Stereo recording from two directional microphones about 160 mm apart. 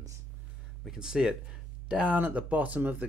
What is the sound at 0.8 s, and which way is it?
Speech, 5° right (ahead or behind).